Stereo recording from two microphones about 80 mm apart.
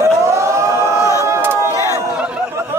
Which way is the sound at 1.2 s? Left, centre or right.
Right.